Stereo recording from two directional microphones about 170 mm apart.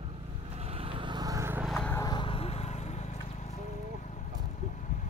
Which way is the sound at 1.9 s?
25° left (ahead or behind).